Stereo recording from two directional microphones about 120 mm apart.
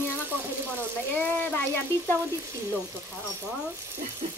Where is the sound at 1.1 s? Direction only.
15° left (ahead or behind).